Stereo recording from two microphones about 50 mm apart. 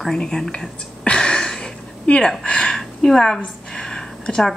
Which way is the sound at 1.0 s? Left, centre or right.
Centre.